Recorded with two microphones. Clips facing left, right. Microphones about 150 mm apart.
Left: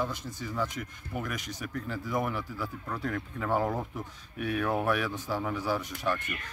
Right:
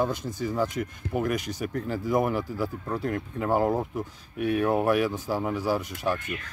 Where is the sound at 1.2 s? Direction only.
40° right (ahead or behind).